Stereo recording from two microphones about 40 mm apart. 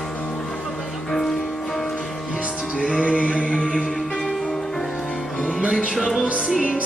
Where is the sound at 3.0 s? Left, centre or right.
Left.